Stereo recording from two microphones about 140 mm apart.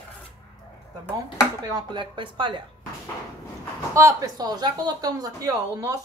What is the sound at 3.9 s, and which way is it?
Speech, 25° right (ahead or behind).